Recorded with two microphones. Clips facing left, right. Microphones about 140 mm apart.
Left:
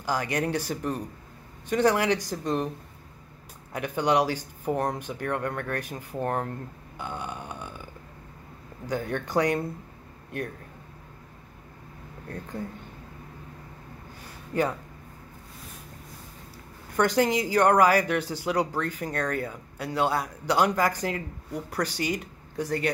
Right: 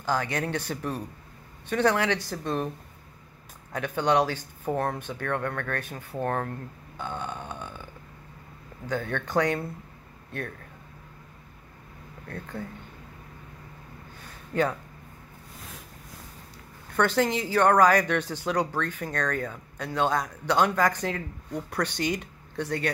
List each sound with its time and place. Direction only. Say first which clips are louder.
0.0 s speech: even; 10° left (ahead or behind)
3.7 s speech: even; 10° left (ahead or behind)
7.0 s a sound: right 1 dB; 10° left (ahead or behind)
8.8 s speech: left 1 dB; 10° left (ahead or behind)
12.3 s speech: left 1 dB; 15° left (ahead or behind)
16.9 s speech: left 1 dB; 10° left (ahead or behind)